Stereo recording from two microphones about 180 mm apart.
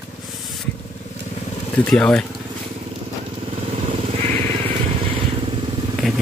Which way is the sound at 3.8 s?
40° right (ahead or behind).